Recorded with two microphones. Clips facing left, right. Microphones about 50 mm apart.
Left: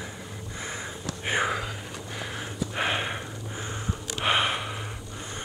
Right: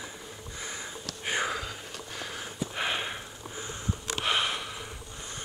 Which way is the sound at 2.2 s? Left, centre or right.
Centre.